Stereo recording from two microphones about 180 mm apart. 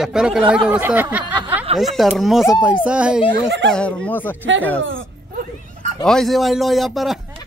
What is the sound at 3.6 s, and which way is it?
Speech, 5° left (ahead or behind).